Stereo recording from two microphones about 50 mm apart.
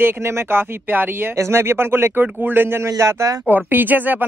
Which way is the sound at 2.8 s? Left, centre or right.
Right.